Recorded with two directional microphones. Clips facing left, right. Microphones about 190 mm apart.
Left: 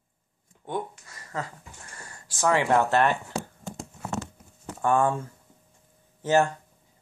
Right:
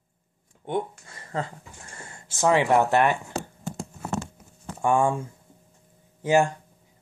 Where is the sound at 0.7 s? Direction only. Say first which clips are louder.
Right 4 dB; 30° right (ahead or behind).